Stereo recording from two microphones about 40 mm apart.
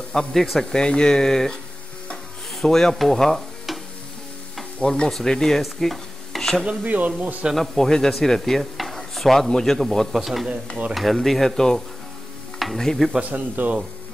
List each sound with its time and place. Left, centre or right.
0.1 s speech: centre
2.6 s speech: centre
3.0 s stir: centre
4.8 s stir: left
5.1 s speech: centre
5.6 s stir: centre
6.8 s speech: right
7.7 s stir: centre
9.5 s speech: centre
12.5 s stir: centre
12.8 s speech: centre
13.2 s speech: right